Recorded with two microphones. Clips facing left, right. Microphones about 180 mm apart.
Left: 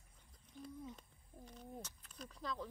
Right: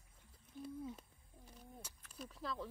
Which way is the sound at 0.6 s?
5° right (ahead or behind).